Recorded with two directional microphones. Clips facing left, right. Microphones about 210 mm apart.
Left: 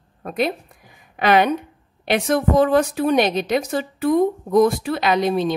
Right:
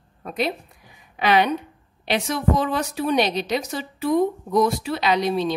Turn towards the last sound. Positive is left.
turn(degrees=50)  # may be behind; listen again after turning